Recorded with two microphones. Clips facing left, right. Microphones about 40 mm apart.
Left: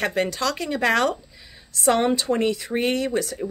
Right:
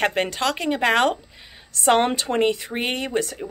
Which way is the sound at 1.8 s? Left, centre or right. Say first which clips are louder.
Right 1 dB; right.